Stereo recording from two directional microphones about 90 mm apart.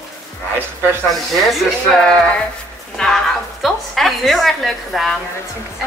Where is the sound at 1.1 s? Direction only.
Centre (ahead or behind).